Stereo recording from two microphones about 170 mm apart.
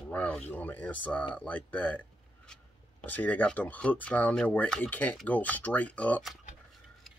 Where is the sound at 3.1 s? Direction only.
10° left (ahead or behind).